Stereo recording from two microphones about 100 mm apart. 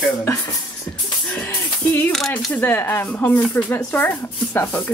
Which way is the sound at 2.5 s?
20° left (ahead or behind).